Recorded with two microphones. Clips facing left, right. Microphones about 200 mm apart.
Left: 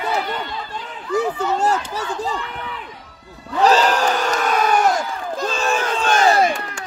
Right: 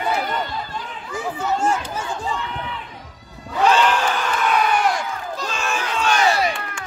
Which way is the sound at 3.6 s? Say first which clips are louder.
Left 2 dB; 40° left (ahead or behind).